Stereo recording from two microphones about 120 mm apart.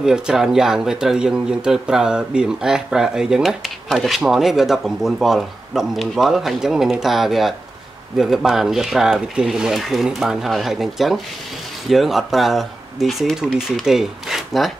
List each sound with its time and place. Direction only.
0.0 s speech: 5° right (ahead or behind)